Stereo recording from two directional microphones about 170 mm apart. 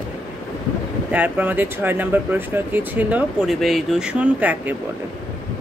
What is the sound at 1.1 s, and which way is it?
Speech, 10° right (ahead or behind).